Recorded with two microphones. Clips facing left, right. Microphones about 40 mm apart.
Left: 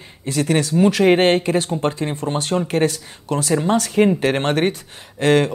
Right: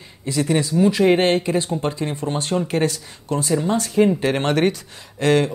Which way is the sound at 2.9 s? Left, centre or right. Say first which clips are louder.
Left 1 dB; left.